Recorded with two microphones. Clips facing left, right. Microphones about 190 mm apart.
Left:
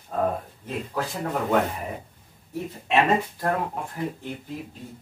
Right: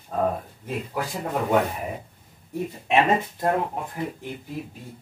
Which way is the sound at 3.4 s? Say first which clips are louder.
Right 2 dB; 20° right (ahead or behind).